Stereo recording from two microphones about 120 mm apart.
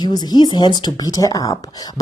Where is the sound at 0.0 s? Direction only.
35° left (ahead or behind).